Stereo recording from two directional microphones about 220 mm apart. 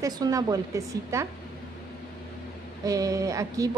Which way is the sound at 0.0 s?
15° right (ahead or behind).